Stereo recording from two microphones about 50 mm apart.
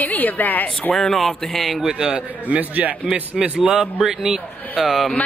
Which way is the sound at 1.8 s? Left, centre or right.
Centre.